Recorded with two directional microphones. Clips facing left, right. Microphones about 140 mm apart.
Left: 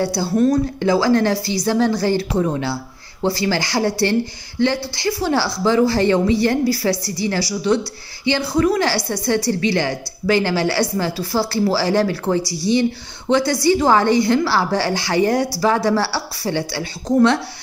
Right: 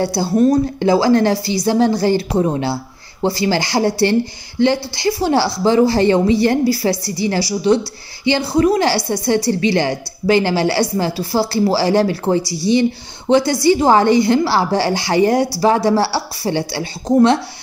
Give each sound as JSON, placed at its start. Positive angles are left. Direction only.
{"t": 0.1, "sound": "a woman's voice", "side_deg": -15}
{"t": 7.3, "sound": "a woman's voice", "side_deg": -15}
{"t": 8.5, "sound": "a woman's voice", "side_deg": -25}